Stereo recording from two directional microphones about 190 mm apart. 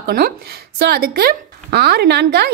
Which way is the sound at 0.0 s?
55° right (ahead or behind).